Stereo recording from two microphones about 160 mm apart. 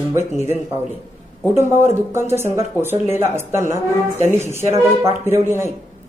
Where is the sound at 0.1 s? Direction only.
15° right (ahead or behind).